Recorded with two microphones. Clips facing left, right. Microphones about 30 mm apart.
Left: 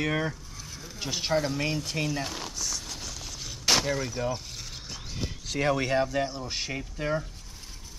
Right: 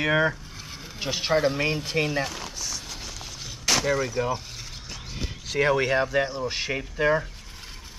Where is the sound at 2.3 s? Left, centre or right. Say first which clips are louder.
Right 1 dB; centre.